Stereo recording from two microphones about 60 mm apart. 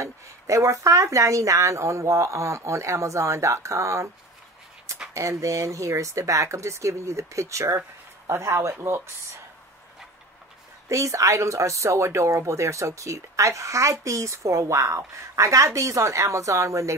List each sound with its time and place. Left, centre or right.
0.0 s speech: right
5.1 s speech: right
10.9 s speech: right